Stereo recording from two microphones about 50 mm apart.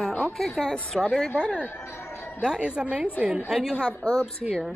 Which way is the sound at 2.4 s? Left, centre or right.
Centre.